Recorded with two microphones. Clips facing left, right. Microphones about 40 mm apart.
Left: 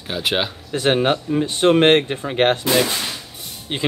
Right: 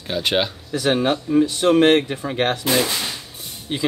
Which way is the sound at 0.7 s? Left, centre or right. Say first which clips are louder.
Left 2 dB; left.